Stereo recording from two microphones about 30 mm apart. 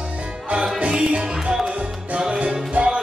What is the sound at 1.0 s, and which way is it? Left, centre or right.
Music, right.